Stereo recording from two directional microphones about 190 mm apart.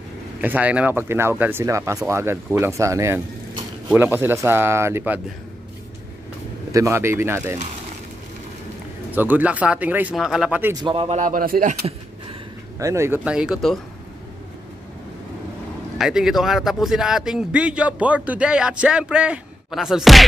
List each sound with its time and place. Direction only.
0.4 s speech: 10° right (ahead or behind)
6.7 s speech: 15° right (ahead or behind)
9.1 s speech: 10° right (ahead or behind)
10.8 s speech: 30° right (ahead or behind); by 11.7 s 50° right (ahead or behind)
12.7 s speech: 15° right (ahead or behind)
16.0 s speech: 5° right (ahead or behind)